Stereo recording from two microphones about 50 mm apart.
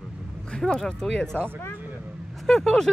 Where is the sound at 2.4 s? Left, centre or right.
Centre.